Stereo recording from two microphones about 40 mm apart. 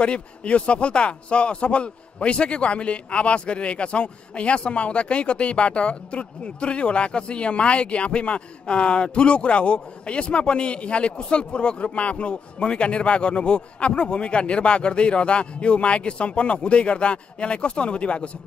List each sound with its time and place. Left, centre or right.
0.0 s speech: left